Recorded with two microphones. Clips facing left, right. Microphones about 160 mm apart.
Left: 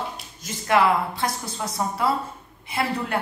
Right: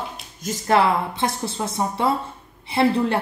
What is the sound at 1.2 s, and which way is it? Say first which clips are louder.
A woman's voice: right 3 dB; 25° right (ahead or behind).